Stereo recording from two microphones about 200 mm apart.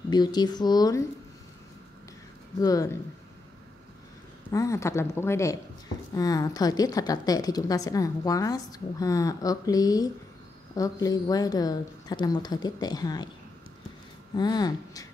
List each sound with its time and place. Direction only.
0.1 s a woman's voice: 20° left (ahead or behind)
2.6 s a woman's voice: 15° left (ahead or behind)
4.5 s a woman's voice: 15° left (ahead or behind)
14.3 s a woman's voice: 20° left (ahead or behind)